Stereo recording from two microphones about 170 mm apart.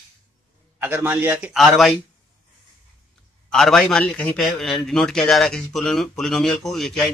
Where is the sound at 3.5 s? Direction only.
5° left (ahead or behind).